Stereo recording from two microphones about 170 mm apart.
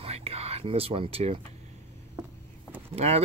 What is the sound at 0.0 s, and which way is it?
Whispering, 35° right (ahead or behind).